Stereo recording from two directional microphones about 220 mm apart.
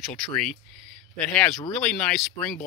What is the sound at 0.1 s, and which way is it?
Speech, 5° left (ahead or behind).